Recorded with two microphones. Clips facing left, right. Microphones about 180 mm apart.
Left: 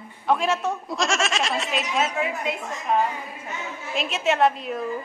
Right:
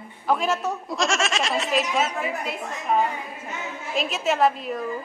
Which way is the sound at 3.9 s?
Centre (ahead or behind).